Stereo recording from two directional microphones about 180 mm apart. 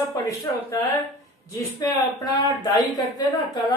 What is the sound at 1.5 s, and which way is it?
A woman's voice, 20° left (ahead or behind).